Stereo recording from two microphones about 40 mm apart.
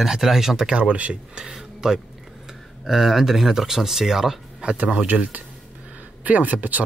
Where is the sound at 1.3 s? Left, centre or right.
Centre.